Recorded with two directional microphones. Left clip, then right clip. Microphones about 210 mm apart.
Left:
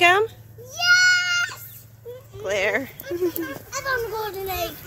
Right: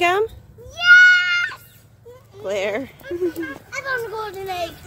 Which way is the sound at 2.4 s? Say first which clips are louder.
Even; 10° right (ahead or behind).